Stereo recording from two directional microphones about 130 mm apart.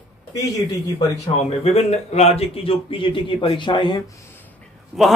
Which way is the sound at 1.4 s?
55° left (ahead or behind).